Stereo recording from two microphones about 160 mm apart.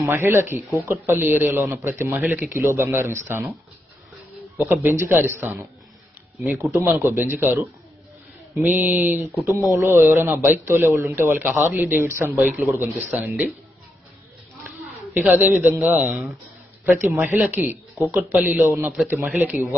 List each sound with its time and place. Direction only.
0.0 s a man's voice: 15° right (ahead or behind)
4.6 s a man's voice: 15° right (ahead or behind)
13.3 s speech: centre (ahead or behind)
15.1 s a man's voice: 10° right (ahead or behind)